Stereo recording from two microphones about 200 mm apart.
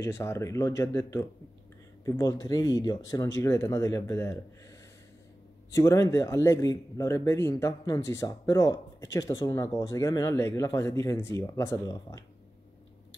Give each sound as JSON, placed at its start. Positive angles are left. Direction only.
{"t": 0.0, "sound": "speech", "side_deg": 15}
{"t": 5.8, "sound": "speech", "side_deg": 15}